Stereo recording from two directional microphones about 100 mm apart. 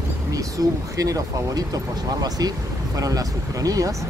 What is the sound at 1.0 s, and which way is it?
Speech, 35° right (ahead or behind).